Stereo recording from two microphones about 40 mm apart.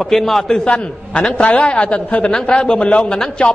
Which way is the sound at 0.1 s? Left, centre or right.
Centre.